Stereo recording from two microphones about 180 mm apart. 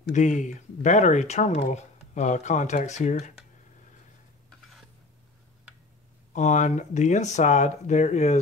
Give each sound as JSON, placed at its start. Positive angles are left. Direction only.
{"t": 0.1, "sound": "speech", "side_deg": 45}
{"t": 6.3, "sound": "speech", "side_deg": 40}